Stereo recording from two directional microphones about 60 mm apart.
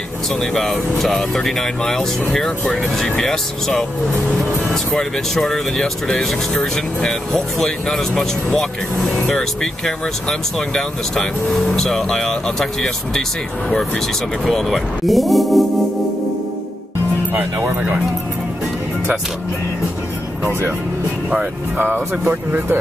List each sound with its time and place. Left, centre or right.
0.4 s speech: centre
4.9 s speech: centre
14.4 s speech: centre
17.3 s speech: right
21.7 s speech: right